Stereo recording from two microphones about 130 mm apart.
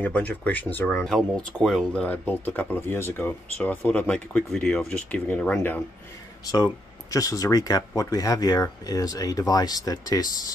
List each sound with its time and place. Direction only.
0.0 s speech: 10° left (ahead or behind)
1.0 s speech: centre (ahead or behind)
6.4 s speech: 30° left (ahead or behind)